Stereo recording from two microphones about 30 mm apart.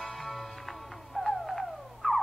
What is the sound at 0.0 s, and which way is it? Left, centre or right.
Music, centre.